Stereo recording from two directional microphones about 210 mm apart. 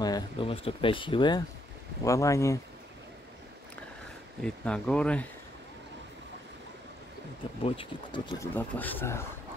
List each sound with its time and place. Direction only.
0.0 s speech: 20° left (ahead or behind)
4.4 s speech: 5° left (ahead or behind)
7.6 s speech: 25° left (ahead or behind)
8.5 s speech: 10° left (ahead or behind)